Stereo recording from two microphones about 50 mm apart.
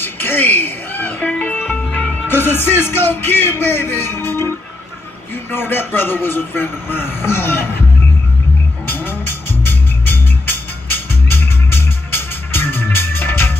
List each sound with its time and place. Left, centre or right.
0.0 s a man's voice: left
1.2 s music: left
2.2 s speech: left
5.5 s a man's voice: left
8.8 s music: left